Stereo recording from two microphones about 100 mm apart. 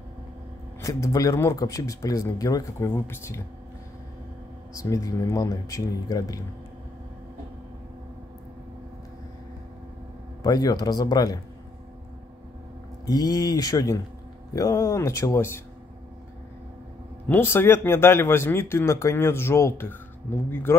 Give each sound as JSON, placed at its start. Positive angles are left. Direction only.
{"t": 0.7, "sound": "speech", "side_deg": 30}
{"t": 4.7, "sound": "speech", "side_deg": 35}
{"t": 10.4, "sound": "speech", "side_deg": 40}
{"t": 13.0, "sound": "speech", "side_deg": 40}
{"t": 17.3, "sound": "speech", "side_deg": 20}